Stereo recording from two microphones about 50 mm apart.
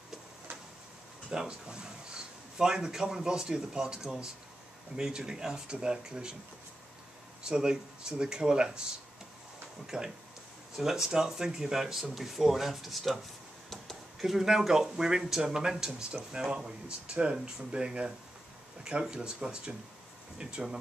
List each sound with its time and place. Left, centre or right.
1.3 s a man's voice: centre
7.4 s a man's voice: centre
9.8 s a man's voice: centre
14.2 s a man's voice: centre